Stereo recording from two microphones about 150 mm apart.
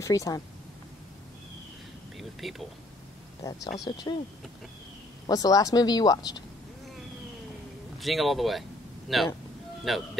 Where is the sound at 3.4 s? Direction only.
20° left (ahead or behind).